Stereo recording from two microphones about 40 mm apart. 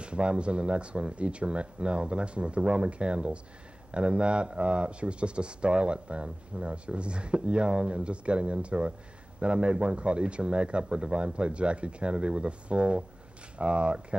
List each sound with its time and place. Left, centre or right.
0.0 s speech: right